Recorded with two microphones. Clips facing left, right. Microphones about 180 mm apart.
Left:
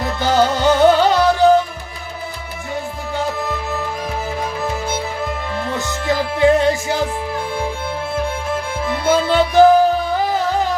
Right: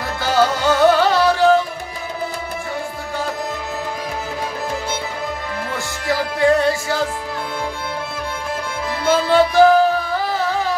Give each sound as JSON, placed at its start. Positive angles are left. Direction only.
{"t": 0.2, "sound": "music", "side_deg": 20}
{"t": 5.7, "sound": "music", "side_deg": 20}
{"t": 9.0, "sound": "music", "side_deg": 20}